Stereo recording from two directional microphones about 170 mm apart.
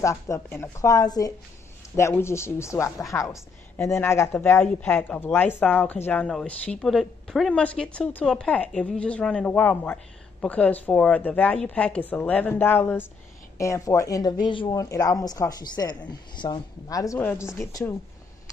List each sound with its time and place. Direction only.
0.0 s a woman's voice: 15° left (ahead or behind)